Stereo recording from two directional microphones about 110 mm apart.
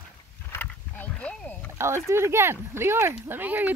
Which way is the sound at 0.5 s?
15° left (ahead or behind).